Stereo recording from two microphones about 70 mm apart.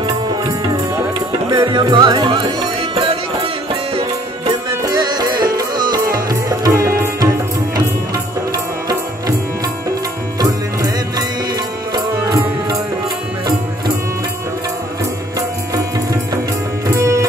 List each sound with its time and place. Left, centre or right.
0.0 s music: right
1.6 s speech: right
4.8 s music: right
6.7 s music: right
10.4 s music: right
16.8 s music: right